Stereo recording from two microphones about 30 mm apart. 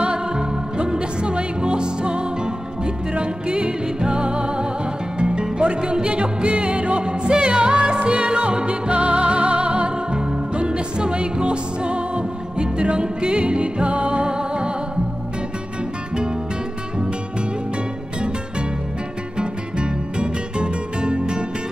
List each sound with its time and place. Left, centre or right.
0.0 s music: right
19.3 s music: right